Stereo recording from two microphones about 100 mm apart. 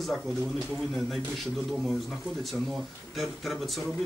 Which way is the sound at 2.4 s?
Centre (ahead or behind).